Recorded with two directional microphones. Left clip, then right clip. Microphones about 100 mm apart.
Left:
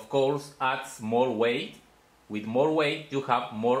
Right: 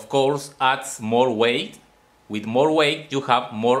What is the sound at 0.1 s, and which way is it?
Speech, 40° right (ahead or behind).